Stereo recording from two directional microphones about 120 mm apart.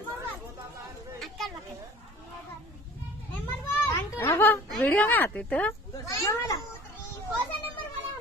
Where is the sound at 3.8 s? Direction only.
20° left (ahead or behind).